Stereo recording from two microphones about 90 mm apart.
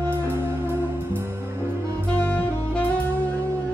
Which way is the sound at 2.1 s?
15° left (ahead or behind).